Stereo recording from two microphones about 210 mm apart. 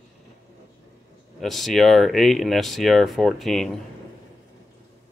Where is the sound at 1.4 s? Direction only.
Centre (ahead or behind).